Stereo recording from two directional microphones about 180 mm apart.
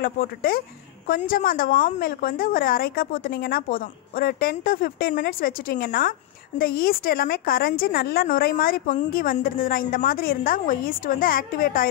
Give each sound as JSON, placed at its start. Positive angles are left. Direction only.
{"t": 0.0, "sound": "a woman's voice", "side_deg": 55}